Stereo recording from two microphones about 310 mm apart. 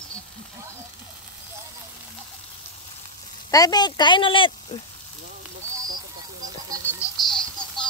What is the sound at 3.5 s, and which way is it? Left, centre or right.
Speech, centre.